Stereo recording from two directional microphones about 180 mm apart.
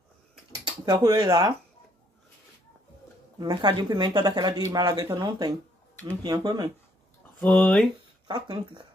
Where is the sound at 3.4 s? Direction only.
25° right (ahead or behind).